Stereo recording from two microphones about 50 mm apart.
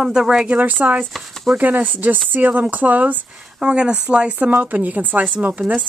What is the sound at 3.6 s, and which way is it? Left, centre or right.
Speech, centre.